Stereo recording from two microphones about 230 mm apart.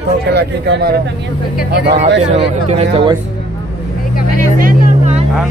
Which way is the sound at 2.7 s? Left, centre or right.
Right.